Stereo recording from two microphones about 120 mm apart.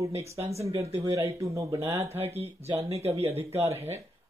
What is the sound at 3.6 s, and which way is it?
Speech, 20° right (ahead or behind).